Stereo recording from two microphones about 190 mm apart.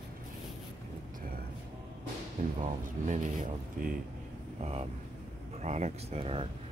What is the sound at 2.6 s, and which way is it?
Speech, 45° right (ahead or behind).